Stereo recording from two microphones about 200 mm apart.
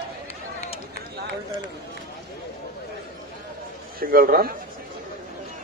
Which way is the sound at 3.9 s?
45° right (ahead or behind).